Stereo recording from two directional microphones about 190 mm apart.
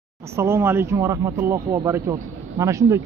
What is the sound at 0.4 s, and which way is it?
A man's voice, 15° right (ahead or behind).